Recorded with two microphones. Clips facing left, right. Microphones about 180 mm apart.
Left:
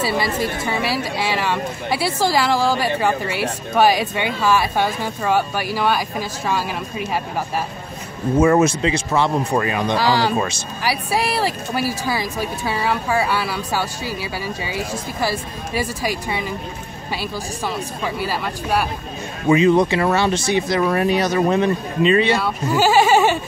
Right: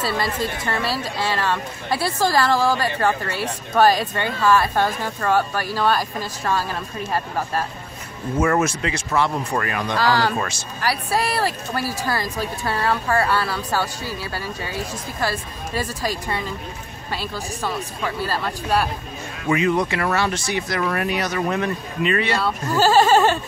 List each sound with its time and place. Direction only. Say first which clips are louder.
0.7 s speech: left 2 dB; 5° left (ahead or behind)
8.4 s speech: left 5 dB; 20° left (ahead or behind)
9.9 s speech: even; 10° left (ahead or behind)
17.6 s speech: left 1 dB; 5° left (ahead or behind)
19.4 s speech: left 6 dB; 25° left (ahead or behind)
22.4 s speech: left 1 dB; 5° left (ahead or behind)